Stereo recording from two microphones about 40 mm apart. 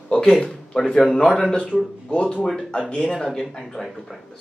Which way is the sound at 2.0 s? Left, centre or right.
Left.